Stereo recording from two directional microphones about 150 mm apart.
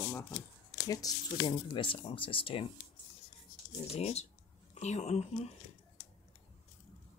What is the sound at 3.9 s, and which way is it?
Speech, 45° left (ahead or behind).